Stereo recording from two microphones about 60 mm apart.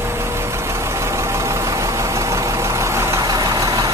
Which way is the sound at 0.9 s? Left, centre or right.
Right.